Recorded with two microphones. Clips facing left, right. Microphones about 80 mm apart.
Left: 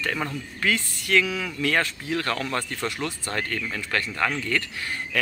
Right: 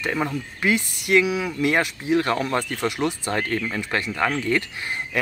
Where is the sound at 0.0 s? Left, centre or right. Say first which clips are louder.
Right 4 dB; centre.